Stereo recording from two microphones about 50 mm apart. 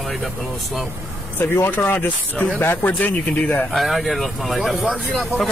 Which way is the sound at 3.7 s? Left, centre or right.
Centre.